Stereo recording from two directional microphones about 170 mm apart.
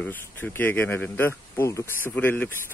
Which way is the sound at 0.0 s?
10° left (ahead or behind).